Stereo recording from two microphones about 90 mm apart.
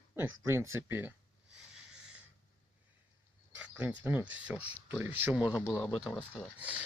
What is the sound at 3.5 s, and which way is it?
Cricket, 20° right (ahead or behind).